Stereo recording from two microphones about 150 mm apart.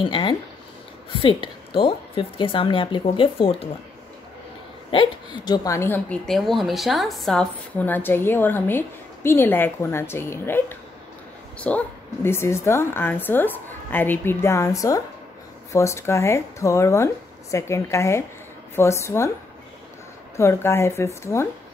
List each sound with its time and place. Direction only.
0.0 s a woman's voice: 35° left (ahead or behind)
4.9 s a woman's voice: 30° left (ahead or behind)
20.3 s a woman's voice: 15° left (ahead or behind)